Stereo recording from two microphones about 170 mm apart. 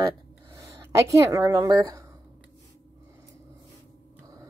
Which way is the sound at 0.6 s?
20° right (ahead or behind).